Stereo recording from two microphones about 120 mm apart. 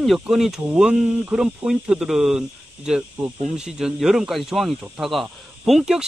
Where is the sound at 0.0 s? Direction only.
Centre (ahead or behind).